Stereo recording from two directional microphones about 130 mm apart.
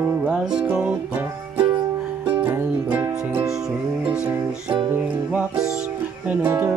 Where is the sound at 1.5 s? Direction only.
40° right (ahead or behind).